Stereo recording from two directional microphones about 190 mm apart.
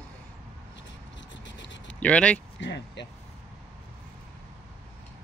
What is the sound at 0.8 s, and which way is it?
Scratch, 70° left (ahead or behind).